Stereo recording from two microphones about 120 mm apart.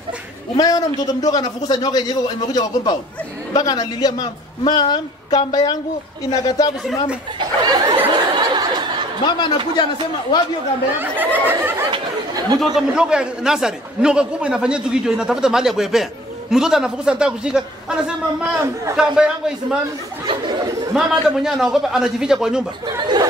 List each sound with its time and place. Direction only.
0.6 s a man's voice: 30° left (ahead or behind)
7.3 s laughter: 45° right (ahead or behind)
11.0 s a man's voice: 15° right (ahead or behind)
11.9 s speech: 35° right (ahead or behind)
12.5 s a man's voice: 5° right (ahead or behind)
20.2 s chatter: 30° right (ahead or behind)
20.9 s a man's voice: 5° right (ahead or behind)
22.9 s speech: 40° right (ahead or behind)